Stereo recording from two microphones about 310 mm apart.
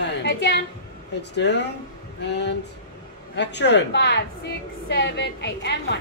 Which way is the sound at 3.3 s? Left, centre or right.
Left.